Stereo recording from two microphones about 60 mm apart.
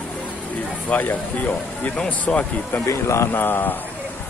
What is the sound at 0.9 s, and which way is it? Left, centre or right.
Speech, left.